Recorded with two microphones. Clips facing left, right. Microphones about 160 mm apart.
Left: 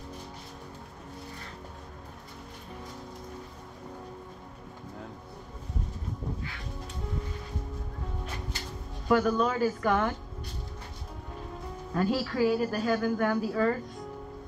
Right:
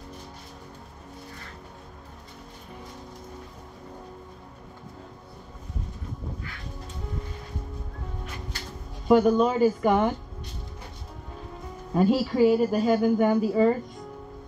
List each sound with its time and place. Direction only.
9.0 s a woman's voice: 20° right (ahead or behind)
11.9 s a woman's voice: 15° right (ahead or behind)